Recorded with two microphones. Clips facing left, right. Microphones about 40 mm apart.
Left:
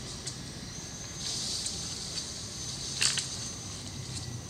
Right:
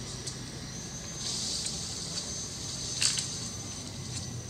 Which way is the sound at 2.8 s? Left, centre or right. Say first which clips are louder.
Left 2 dB; centre.